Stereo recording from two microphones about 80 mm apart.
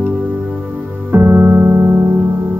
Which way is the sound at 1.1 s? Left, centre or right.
Right.